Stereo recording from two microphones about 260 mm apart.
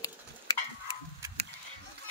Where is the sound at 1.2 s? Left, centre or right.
Centre.